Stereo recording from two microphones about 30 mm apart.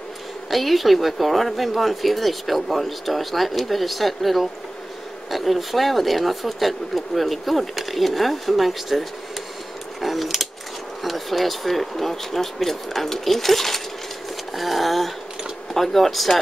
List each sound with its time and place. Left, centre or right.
0.5 s speech: centre
9.9 s a sound: centre
11.1 s speech: centre